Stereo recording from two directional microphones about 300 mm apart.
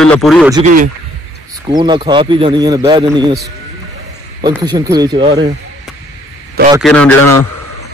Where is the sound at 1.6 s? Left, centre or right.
Centre.